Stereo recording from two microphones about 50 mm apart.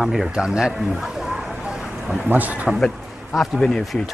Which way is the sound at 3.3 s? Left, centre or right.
Centre.